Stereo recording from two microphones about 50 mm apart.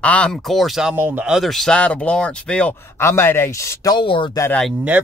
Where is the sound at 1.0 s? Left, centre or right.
Right.